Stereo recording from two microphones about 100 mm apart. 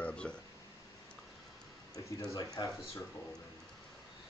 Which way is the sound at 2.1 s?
35° left (ahead or behind).